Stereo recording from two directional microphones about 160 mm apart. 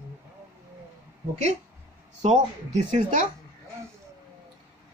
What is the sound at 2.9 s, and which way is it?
Speech, 55° right (ahead or behind).